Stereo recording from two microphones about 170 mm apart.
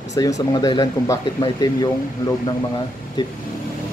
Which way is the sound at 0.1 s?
20° left (ahead or behind).